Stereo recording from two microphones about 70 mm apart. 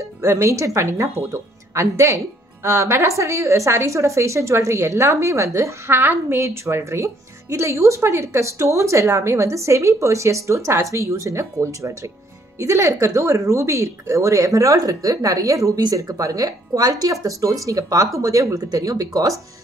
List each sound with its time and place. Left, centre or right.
0.2 s speech: right